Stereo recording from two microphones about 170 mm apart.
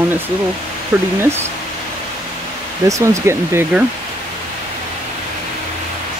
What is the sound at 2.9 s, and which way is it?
Speech, 15° right (ahead or behind).